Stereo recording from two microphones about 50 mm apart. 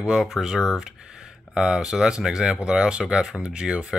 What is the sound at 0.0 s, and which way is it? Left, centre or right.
Speech, centre.